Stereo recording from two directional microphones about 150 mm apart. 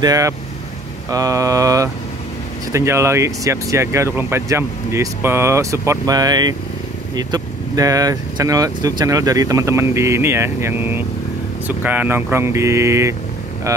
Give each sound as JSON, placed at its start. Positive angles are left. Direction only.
{"t": 0.0, "sound": "speech", "side_deg": -20}